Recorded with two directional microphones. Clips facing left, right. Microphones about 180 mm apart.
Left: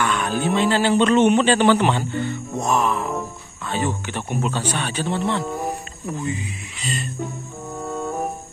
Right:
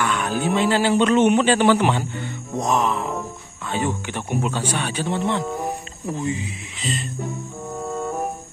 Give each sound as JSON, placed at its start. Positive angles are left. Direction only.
{"t": 0.0, "sound": "a man's voice", "side_deg": -10}
{"t": 2.6, "sound": "music", "side_deg": -20}
{"t": 3.6, "sound": "a man's voice", "side_deg": -15}
{"t": 6.0, "sound": "music", "side_deg": -25}
{"t": 7.8, "sound": "music", "side_deg": 0}